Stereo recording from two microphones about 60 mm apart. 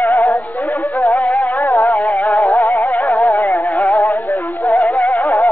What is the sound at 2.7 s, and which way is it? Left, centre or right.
Music, left.